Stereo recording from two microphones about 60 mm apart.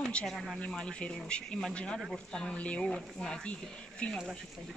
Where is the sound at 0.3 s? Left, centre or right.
Centre.